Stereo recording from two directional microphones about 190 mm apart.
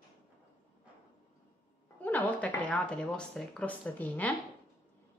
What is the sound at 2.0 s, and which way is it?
Speech, 10° left (ahead or behind).